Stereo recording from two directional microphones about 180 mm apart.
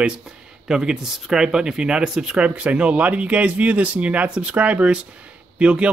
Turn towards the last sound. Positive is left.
turn(degrees=-5)  # may be behind; listen again after turning